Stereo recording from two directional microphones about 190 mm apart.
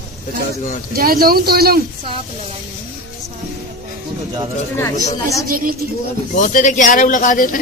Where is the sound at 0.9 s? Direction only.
50° right (ahead or behind).